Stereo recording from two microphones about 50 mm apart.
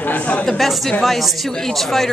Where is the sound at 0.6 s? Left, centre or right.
Centre.